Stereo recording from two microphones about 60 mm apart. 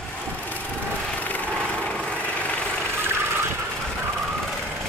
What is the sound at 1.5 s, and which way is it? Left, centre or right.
Vehicle, centre.